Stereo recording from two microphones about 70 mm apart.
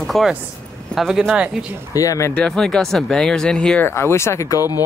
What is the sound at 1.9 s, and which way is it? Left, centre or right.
Speech, left.